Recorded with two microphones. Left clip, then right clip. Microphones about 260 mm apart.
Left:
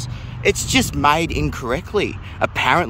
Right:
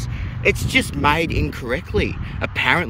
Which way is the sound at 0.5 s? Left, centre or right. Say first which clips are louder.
Even; centre.